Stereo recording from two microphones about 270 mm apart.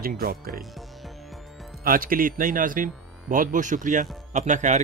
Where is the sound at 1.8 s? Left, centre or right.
Right.